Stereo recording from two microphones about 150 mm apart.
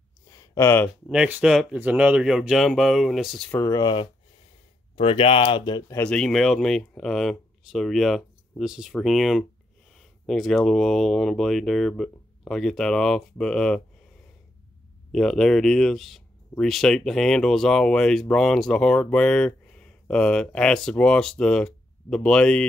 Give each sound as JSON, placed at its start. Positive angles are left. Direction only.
{"t": 0.3, "sound": "a sound", "side_deg": 20}
{"t": 1.0, "sound": "speech", "side_deg": -10}
{"t": 3.6, "sound": "speech", "side_deg": 25}
{"t": 5.9, "sound": "speech", "side_deg": 5}
{"t": 15.1, "sound": "speech", "side_deg": 5}